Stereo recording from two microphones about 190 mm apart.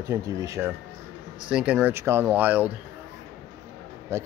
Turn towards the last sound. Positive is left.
turn(degrees=-15)  # may be behind; listen again after turning